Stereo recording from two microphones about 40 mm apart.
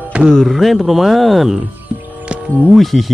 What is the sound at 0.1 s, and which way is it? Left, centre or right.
Speech, right.